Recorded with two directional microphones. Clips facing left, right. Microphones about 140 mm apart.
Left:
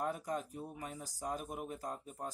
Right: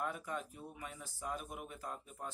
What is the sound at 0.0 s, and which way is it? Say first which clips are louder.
Speech: left 3 dB; 40° left (ahead or behind).